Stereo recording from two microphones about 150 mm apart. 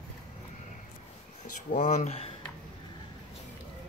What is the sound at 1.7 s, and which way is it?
Speech, 55° left (ahead or behind).